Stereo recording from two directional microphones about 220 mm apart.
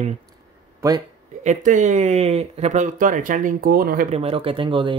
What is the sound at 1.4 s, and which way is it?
Speech, 35° right (ahead or behind).